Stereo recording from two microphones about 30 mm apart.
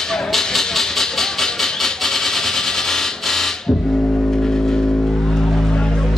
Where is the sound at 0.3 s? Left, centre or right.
Centre.